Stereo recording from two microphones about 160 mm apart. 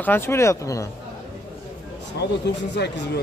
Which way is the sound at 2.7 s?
90° left.